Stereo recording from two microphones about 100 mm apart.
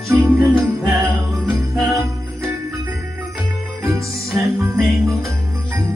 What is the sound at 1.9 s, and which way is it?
Jingle bell, 30° right (ahead or behind).